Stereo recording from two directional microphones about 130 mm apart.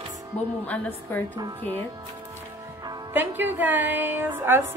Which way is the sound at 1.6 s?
50° right (ahead or behind).